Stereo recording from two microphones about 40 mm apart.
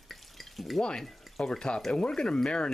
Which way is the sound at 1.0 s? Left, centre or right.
Centre.